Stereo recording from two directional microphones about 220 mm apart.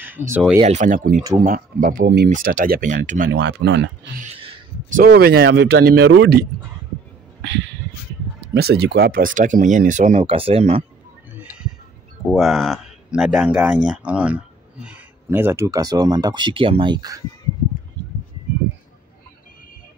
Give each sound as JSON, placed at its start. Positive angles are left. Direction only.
{"t": 0.0, "sound": "speech", "side_deg": -10}
{"t": 0.6, "sound": "speech", "side_deg": -30}
{"t": 2.2, "sound": "speech", "side_deg": -35}
{"t": 3.3, "sound": "speech", "side_deg": -50}
{"t": 4.2, "sound": "a sound", "side_deg": -25}
{"t": 5.0, "sound": "speech", "side_deg": -45}
{"t": 8.5, "sound": "speech", "side_deg": -45}
{"t": 11.3, "sound": "a sound", "side_deg": -5}
{"t": 12.3, "sound": "speech", "side_deg": 0}